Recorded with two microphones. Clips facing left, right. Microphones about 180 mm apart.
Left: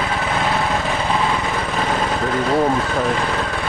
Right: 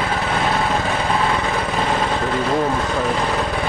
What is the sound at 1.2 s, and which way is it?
Vehicle, 5° right (ahead or behind).